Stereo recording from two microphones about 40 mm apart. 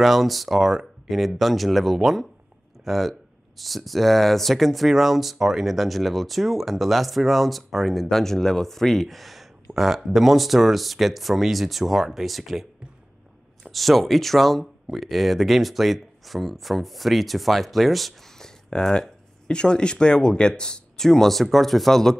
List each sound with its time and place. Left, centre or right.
0.0 s speech: centre
13.7 s speech: centre
18.4 s speech: centre
21.1 s speech: centre